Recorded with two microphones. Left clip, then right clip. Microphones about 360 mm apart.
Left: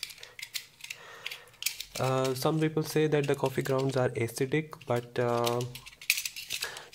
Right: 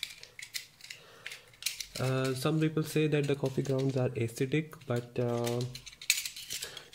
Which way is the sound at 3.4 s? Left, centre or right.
Left.